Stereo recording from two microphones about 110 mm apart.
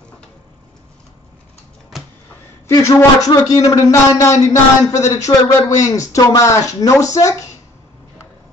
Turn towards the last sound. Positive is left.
turn(degrees=30)  # may be behind; listen again after turning